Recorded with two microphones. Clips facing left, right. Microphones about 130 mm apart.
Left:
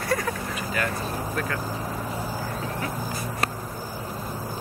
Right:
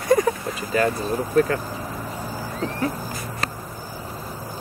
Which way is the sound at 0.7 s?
30° right (ahead or behind).